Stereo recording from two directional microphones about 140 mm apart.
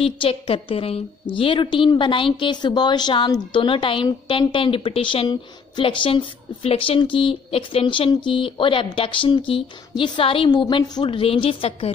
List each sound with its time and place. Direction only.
0.0 s a woman's voice: 45° left (ahead or behind)